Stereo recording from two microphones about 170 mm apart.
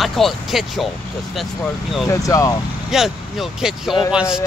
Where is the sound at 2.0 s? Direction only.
15° left (ahead or behind).